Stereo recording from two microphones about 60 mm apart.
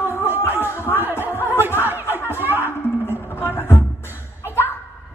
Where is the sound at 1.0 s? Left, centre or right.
Right.